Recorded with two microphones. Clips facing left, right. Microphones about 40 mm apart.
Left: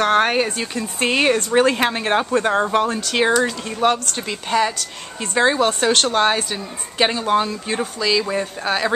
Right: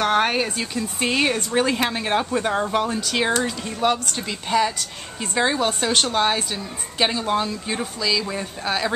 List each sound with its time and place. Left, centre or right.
0.0 s speech: centre
0.3 s speech: centre